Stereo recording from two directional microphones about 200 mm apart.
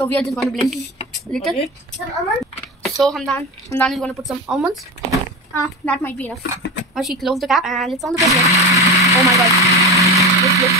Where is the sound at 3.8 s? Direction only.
5° left (ahead or behind).